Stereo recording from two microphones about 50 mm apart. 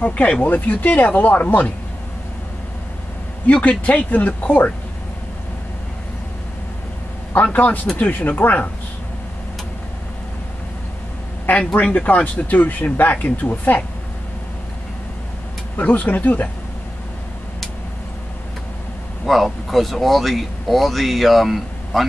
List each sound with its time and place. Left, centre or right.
0.0 s speech: left
0.4 s speech: left
3.8 s speech: left
7.5 s speech: left
11.4 s speech: left
15.7 s speech: left
19.2 s speech: centre